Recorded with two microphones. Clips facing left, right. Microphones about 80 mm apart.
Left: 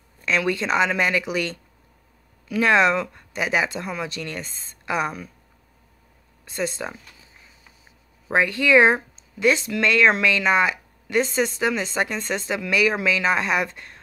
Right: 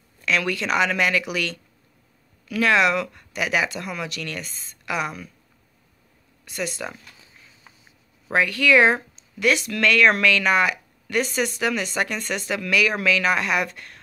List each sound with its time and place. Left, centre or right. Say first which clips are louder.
0.2 s speech: left 1 dB; left
6.4 s speech: left 2 dB; left
8.3 s speech: even; left